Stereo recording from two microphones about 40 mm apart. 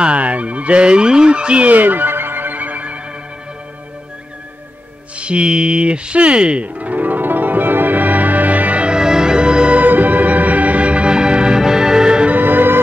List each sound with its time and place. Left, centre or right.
0.0 s fowl: right
1.7 s music: right
5.1 s music: right
8.8 s music: centre
9.8 s music: right; by 12.3 s centre
12.3 s music: right